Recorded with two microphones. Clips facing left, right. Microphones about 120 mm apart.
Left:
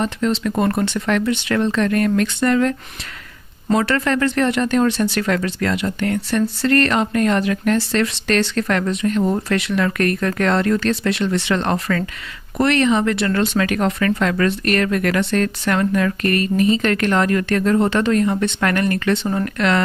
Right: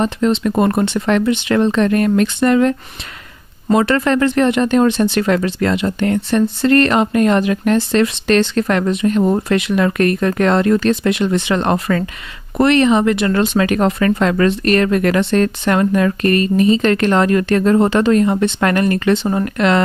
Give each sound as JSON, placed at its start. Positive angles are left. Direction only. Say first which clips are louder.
{"t": 0.0, "sound": "speech", "louder": "right 4 dB", "side_deg": -20}